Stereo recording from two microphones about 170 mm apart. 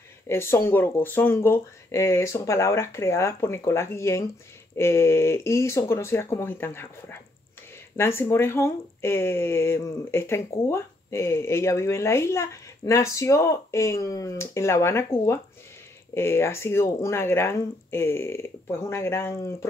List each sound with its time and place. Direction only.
0.3 s speech: 15° left (ahead or behind)